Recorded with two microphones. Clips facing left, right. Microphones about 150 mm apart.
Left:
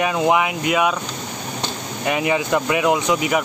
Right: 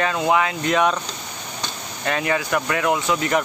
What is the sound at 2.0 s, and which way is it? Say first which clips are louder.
Speech: left 3 dB; 15° left (ahead or behind).